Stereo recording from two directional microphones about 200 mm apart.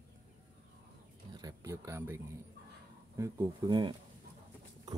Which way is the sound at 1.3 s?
20° right (ahead or behind).